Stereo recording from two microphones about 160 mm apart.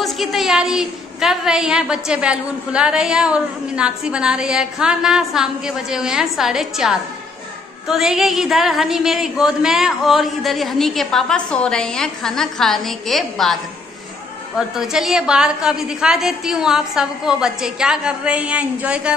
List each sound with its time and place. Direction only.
0.0 s a woman's voice: centre (ahead or behind)
14.8 s a woman's voice: 5° right (ahead or behind)